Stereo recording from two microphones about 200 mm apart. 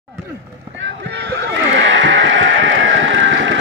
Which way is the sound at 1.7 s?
65° right (ahead or behind).